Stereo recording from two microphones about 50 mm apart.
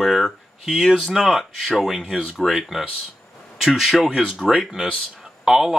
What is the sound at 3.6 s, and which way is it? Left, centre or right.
Speech, centre.